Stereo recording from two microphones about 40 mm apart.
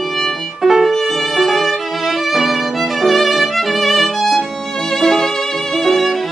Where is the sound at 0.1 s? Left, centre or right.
Centre.